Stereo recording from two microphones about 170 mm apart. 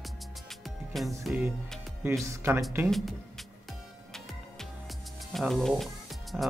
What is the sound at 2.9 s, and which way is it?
Speech, centre (ahead or behind).